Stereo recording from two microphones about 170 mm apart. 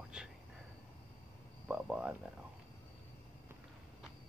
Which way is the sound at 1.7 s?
5° right (ahead or behind).